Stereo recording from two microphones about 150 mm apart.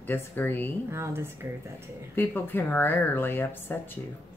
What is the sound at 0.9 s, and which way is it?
Speech, 15° right (ahead or behind).